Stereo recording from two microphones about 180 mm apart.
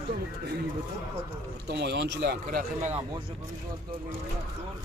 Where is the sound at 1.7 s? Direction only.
65° right (ahead or behind).